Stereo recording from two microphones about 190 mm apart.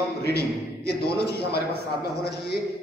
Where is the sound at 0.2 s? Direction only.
55° left (ahead or behind).